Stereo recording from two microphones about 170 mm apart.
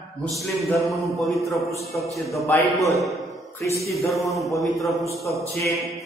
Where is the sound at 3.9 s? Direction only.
20° left (ahead or behind).